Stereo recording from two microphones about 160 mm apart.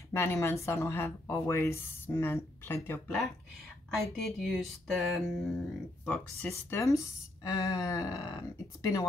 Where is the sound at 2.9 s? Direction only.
5° left (ahead or behind).